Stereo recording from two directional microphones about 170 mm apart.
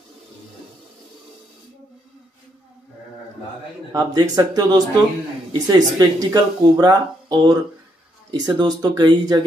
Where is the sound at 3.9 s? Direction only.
20° right (ahead or behind).